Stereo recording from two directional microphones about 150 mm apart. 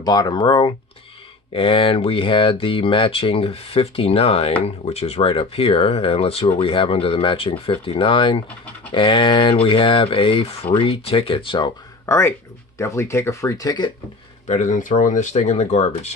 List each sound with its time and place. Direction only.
0.0 s speech: 30° left (ahead or behind)
12.1 s speech: 20° left (ahead or behind)
14.5 s speech: 55° left (ahead or behind)